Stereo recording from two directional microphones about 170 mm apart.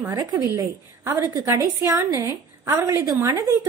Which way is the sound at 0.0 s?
20° right (ahead or behind).